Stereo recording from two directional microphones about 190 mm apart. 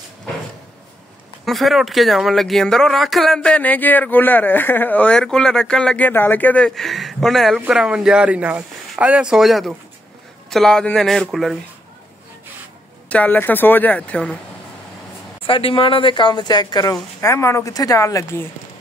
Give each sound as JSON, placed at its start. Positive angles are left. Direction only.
{"t": 1.4, "sound": "speech", "side_deg": 0}
{"t": 13.1, "sound": "speech", "side_deg": 10}
{"t": 15.4, "sound": "speech", "side_deg": 30}